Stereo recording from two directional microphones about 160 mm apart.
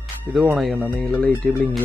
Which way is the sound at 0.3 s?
Centre (ahead or behind).